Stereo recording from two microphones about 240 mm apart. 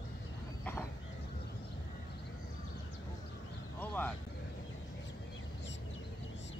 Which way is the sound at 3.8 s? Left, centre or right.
Centre.